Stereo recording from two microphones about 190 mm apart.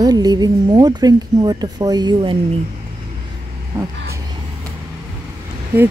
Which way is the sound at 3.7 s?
15° right (ahead or behind).